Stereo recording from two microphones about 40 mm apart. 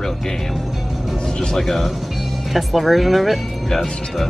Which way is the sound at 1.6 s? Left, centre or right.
Centre.